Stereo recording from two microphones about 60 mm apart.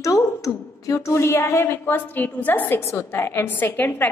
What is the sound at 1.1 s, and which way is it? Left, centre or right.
Speech, left.